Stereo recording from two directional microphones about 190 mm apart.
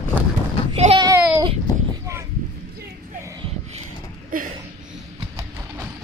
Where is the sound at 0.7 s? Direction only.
30° right (ahead or behind).